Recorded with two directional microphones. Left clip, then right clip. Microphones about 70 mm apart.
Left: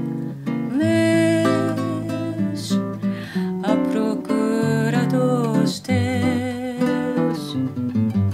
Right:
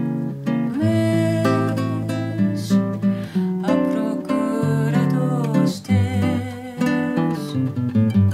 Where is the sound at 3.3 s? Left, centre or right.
Left.